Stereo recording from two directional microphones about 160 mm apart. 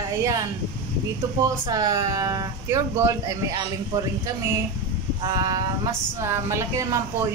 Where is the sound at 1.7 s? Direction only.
25° right (ahead or behind).